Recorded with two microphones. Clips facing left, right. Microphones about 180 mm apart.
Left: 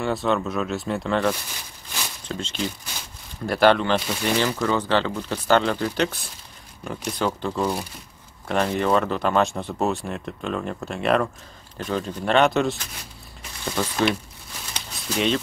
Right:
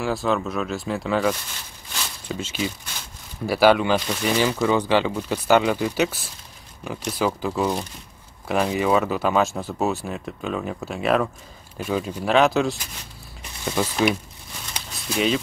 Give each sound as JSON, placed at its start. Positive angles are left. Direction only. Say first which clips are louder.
{"t": 0.0, "sound": "speech", "louder": "even", "side_deg": 0}
{"t": 13.7, "sound": "speech", "louder": "right 1 dB", "side_deg": -10}